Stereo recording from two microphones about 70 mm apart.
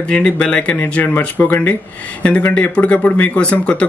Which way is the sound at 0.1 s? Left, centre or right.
Centre.